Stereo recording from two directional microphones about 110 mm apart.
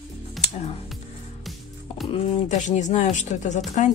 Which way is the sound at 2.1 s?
90° left.